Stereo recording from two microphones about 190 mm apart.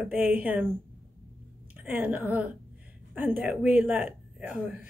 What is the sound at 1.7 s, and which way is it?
A woman's voice, 10° right (ahead or behind).